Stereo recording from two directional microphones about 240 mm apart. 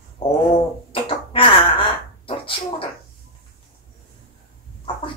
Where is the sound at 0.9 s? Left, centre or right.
Left.